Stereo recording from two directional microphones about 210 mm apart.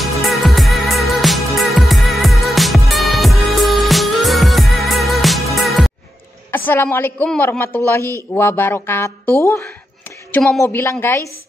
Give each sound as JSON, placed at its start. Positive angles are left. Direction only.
{"t": 0.0, "sound": "music", "side_deg": 0}
{"t": 6.5, "sound": "speech", "side_deg": 10}
{"t": 10.3, "sound": "speech", "side_deg": 0}
{"t": 10.6, "sound": "speech", "side_deg": 10}